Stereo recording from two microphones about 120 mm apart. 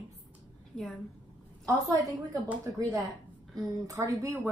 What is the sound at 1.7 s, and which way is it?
Speech, 30° right (ahead or behind).